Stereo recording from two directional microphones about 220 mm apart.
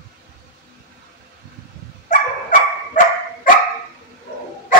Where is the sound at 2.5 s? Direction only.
35° left (ahead or behind).